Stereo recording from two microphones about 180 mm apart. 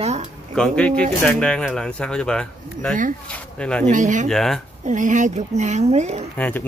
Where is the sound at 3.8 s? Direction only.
45° right (ahead or behind).